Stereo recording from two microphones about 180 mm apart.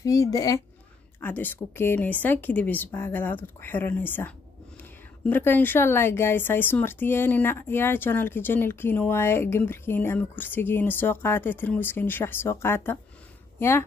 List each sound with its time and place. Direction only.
0.0 s a child's voice: 20° left (ahead or behind)